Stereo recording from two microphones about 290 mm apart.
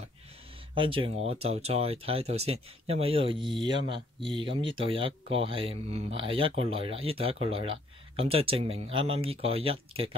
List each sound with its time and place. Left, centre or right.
0.7 s speech: centre